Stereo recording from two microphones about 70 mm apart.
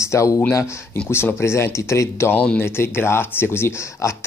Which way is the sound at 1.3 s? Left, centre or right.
Left.